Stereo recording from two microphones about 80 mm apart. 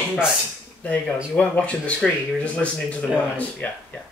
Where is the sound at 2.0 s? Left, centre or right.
Centre.